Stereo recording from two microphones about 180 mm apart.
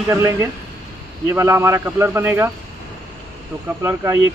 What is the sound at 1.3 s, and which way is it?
Speech, 15° right (ahead or behind).